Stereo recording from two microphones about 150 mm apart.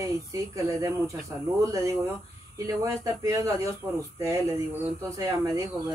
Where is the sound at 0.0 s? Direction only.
20° right (ahead or behind).